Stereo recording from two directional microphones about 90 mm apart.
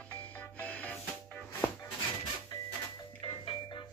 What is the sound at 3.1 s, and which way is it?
Music, 65° left (ahead or behind).